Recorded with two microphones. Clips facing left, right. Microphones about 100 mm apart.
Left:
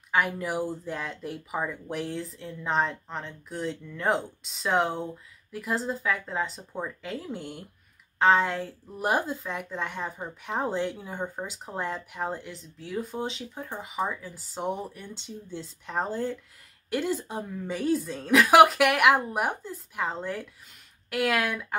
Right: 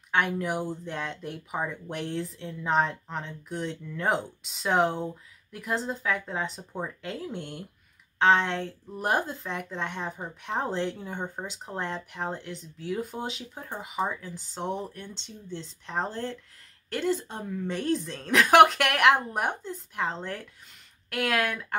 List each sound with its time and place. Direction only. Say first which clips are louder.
0.1 s speech: even; 5° left (ahead or behind)